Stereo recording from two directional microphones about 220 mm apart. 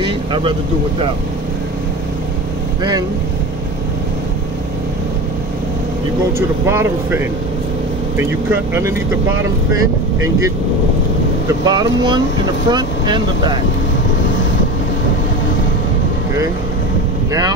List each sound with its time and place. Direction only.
0.0 s vehicle: 20° right (ahead or behind)
6.6 s speech: 10° right (ahead or behind)
8.2 s speech: 10° right (ahead or behind)
11.4 s speech: 15° right (ahead or behind)